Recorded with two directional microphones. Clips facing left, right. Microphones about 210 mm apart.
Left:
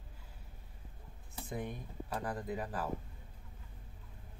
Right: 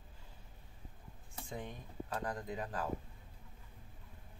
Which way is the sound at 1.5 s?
10° left (ahead or behind).